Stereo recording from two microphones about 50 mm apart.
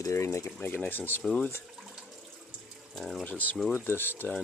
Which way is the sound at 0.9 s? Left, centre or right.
Left.